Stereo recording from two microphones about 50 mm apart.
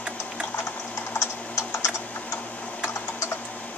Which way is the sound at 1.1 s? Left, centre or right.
Left.